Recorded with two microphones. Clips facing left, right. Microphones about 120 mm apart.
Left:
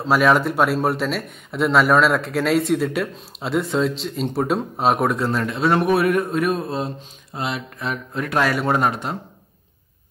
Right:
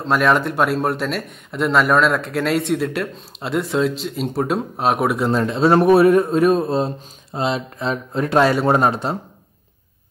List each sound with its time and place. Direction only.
0.0 s speech: centre (ahead or behind)
5.3 s speech: 30° right (ahead or behind)